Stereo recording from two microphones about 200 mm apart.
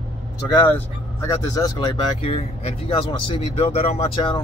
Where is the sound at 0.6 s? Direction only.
10° left (ahead or behind).